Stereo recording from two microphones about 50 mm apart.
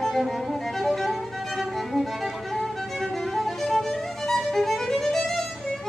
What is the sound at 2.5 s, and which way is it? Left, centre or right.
Violin, centre.